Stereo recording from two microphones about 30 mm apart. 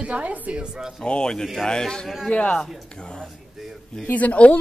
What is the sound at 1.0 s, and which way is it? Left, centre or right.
A man's voice, left.